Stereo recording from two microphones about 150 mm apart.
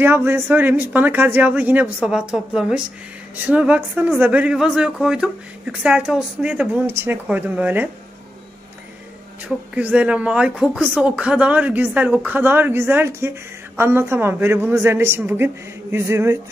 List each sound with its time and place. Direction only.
0.0 s speech: 15° right (ahead or behind)
9.8 s speech: 10° right (ahead or behind)